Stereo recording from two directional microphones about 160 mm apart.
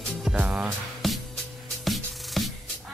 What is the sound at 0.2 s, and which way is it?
Music, 5° right (ahead or behind).